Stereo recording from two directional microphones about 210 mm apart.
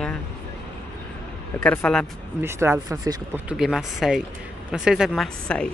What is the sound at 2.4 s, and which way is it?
Speech, 10° right (ahead or behind).